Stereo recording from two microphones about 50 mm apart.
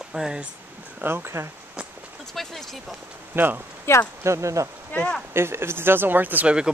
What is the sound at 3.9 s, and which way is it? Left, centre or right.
Speech, left.